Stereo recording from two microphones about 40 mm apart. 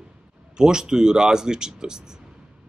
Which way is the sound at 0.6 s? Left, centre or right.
Centre.